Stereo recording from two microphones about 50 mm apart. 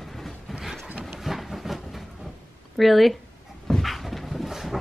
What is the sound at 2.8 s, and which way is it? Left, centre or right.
Speech, centre.